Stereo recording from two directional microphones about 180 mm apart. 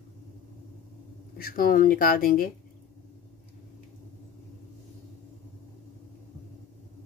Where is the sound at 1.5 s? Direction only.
50° left (ahead or behind).